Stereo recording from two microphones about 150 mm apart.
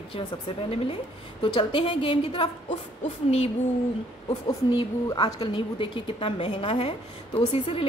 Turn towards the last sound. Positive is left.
turn(degrees=40)  # may be behind; listen again after turning